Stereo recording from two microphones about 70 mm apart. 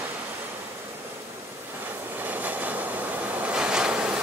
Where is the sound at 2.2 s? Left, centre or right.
Right.